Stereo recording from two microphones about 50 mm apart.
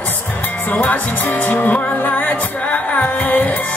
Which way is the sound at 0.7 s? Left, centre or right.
Left.